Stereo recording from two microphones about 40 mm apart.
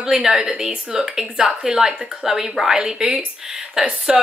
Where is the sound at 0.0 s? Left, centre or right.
Centre.